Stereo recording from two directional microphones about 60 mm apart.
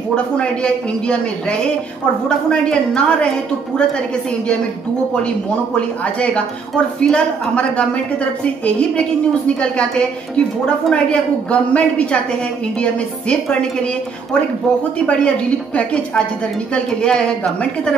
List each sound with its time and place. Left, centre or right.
0.1 s a woman's voice: centre
2.2 s a woman's voice: centre
6.7 s a woman's voice: centre
15.0 s a woman's voice: centre